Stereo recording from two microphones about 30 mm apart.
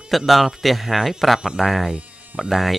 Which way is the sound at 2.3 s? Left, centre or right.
Right.